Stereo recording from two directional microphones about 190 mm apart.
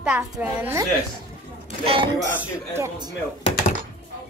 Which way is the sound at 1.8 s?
30° right (ahead or behind).